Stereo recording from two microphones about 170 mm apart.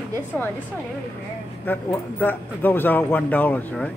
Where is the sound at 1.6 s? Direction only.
10° left (ahead or behind).